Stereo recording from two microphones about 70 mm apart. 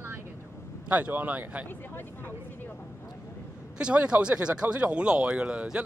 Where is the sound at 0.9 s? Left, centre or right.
Right.